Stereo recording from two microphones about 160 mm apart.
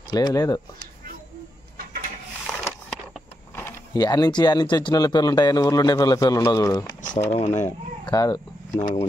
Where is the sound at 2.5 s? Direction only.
Centre (ahead or behind).